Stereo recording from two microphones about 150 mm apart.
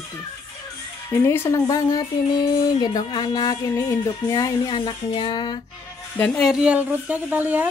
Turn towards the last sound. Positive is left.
turn(degrees=-10)  # may be behind; listen again after turning